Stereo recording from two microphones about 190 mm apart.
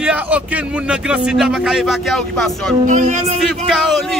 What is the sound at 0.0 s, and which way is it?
A man's voice, 5° right (ahead or behind).